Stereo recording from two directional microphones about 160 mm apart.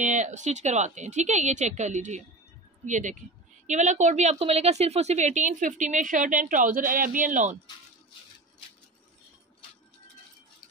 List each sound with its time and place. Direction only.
0.0 s a woman's voice: 50° right (ahead or behind)